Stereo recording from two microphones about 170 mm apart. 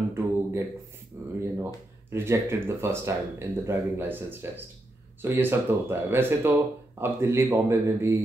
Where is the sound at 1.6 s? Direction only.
15° right (ahead or behind).